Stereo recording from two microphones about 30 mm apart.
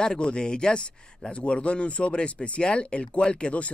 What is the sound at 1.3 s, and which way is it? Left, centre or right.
Speech, left.